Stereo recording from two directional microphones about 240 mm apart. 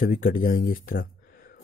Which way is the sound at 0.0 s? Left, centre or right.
Left.